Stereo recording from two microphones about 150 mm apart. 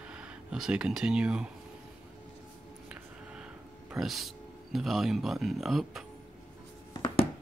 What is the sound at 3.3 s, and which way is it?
Speech, 5° right (ahead or behind).